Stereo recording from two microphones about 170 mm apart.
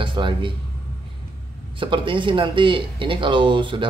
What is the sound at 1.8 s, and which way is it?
A man's voice, 30° right (ahead or behind).